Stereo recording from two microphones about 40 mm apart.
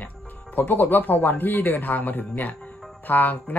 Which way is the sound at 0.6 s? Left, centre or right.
Left.